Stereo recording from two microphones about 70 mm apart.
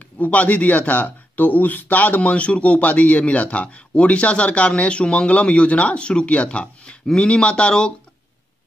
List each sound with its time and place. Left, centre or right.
0.2 s speech: left